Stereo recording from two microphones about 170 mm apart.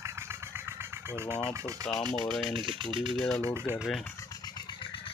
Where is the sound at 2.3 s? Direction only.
Centre (ahead or behind).